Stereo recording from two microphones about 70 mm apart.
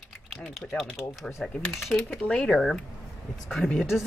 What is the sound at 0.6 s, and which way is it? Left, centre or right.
Speech, centre.